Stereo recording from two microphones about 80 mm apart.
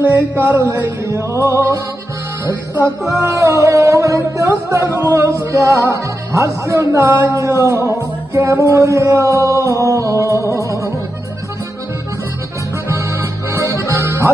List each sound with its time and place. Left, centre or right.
0.0 s music: right
3.2 s music: right
12.8 s accordion: right